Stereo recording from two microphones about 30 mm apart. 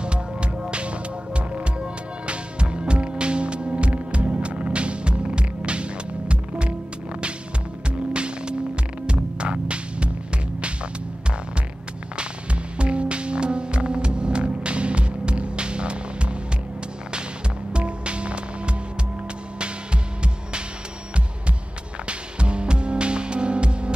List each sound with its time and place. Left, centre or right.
0.0 s music: right
0.7 s hum: right
8.1 s hum: right
9.0 s music: right
12.7 s music: right
17.7 s music: right
22.0 s music: right